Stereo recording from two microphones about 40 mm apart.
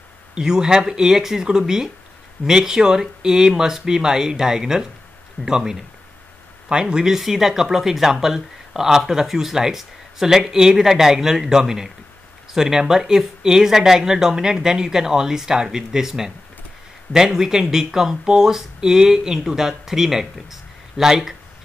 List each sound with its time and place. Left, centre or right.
0.3 s speech: centre
7.2 s speech: centre